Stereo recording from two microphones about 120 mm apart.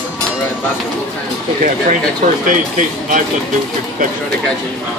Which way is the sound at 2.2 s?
90° right.